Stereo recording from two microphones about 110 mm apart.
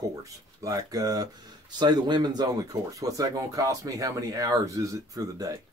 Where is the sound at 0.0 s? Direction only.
30° right (ahead or behind).